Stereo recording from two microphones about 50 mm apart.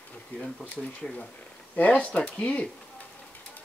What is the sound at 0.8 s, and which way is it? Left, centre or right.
Speech, centre.